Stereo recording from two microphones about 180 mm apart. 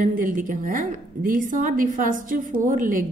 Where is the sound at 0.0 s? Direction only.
45° right (ahead or behind).